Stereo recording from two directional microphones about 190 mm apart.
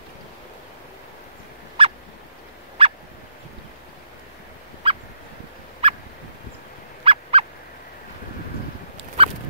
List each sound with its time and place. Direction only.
1.8 s fowl: 30° right (ahead or behind)
4.8 s fowl: 30° right (ahead or behind)
7.1 s fowl: 30° right (ahead or behind)
8.9 s a sound: 30° right (ahead or behind)